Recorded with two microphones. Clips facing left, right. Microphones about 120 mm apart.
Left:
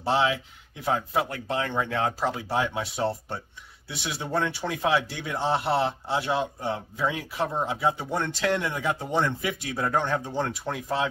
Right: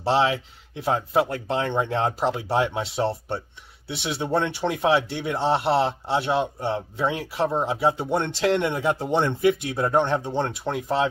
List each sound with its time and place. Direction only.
0.0 s speech: 30° right (ahead or behind)